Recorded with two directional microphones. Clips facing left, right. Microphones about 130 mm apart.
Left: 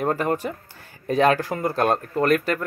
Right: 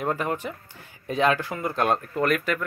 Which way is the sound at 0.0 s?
40° left (ahead or behind).